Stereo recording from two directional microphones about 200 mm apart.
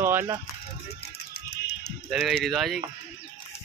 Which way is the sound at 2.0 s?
Centre (ahead or behind).